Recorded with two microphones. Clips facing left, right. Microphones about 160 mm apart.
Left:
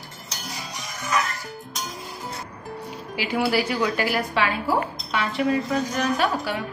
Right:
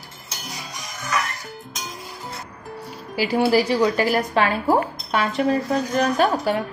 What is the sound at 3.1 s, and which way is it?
A woman's voice, 35° right (ahead or behind).